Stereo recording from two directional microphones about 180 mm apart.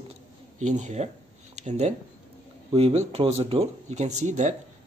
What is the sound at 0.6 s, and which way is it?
Speech, 40° right (ahead or behind).